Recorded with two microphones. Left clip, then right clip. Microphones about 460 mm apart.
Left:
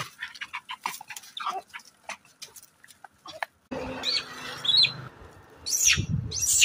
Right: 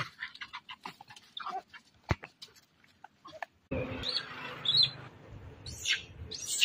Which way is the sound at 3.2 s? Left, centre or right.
Right.